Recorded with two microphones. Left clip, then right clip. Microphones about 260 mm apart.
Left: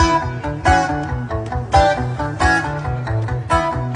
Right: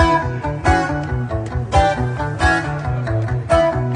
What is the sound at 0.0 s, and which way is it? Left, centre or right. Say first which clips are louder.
Music: right 1 dB; centre.